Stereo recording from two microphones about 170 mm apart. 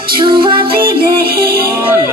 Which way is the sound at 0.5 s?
65° right (ahead or behind).